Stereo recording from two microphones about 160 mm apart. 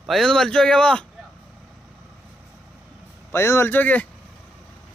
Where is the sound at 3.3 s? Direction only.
15° left (ahead or behind).